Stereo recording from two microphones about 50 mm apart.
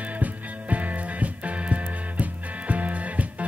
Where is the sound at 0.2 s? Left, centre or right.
Right.